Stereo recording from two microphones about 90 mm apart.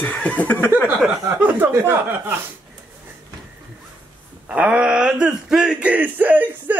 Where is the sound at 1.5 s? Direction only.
25° right (ahead or behind).